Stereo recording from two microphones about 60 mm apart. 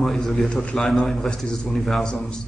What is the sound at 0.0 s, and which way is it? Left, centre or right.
A man's voice, centre.